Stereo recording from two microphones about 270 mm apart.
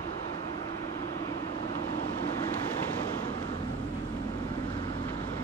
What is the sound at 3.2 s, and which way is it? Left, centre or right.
Vehicle, centre.